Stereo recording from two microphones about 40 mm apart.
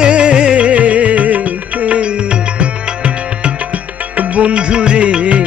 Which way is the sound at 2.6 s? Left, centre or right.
Right.